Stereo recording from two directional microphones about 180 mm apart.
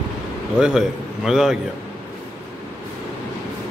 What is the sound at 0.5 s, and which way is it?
Speech, 5° right (ahead or behind).